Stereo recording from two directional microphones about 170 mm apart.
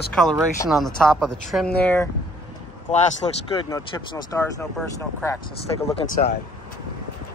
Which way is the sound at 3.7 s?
20° left (ahead or behind).